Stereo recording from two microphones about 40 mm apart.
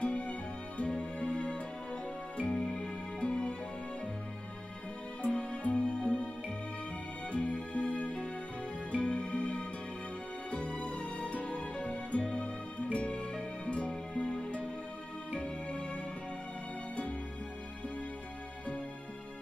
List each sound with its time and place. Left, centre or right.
0.0 s music: left
5.2 s music: left
7.2 s music: left